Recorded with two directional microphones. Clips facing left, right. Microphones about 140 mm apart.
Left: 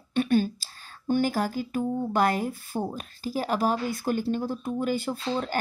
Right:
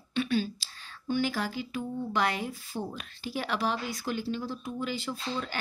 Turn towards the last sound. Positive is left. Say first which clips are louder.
# left 6 dB
turn(degrees=45)  # may be behind; listen again after turning